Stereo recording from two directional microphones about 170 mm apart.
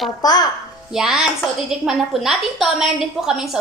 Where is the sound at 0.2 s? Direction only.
25° left (ahead or behind).